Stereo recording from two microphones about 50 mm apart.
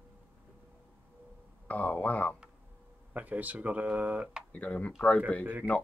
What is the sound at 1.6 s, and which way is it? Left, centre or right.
Speech, left.